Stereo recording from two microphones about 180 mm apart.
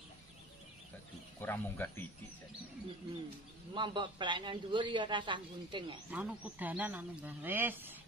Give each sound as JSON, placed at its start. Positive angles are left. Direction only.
{"t": 1.4, "sound": "speech", "side_deg": 10}
{"t": 3.7, "sound": "a man's voice", "side_deg": -25}
{"t": 6.0, "sound": "speech", "side_deg": -10}